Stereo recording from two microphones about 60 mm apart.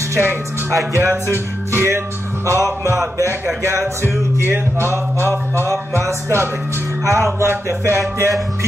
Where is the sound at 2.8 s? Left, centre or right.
Right.